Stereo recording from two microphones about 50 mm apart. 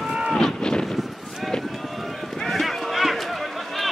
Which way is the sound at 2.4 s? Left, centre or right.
Centre.